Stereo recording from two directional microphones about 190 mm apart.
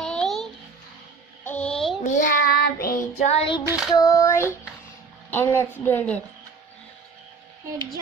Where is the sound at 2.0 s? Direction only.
40° left (ahead or behind).